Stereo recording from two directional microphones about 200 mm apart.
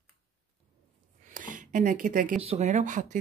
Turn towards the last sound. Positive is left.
turn(degrees=-40)  # may be behind; listen again after turning